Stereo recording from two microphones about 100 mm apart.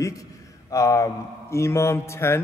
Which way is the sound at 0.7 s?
35° left (ahead or behind).